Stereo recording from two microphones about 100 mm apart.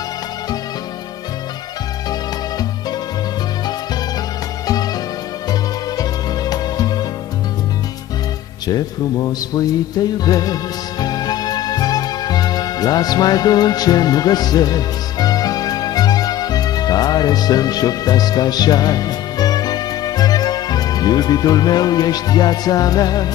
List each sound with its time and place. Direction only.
5.5 s music: 40° left (ahead or behind)
8.6 s music: 40° left (ahead or behind)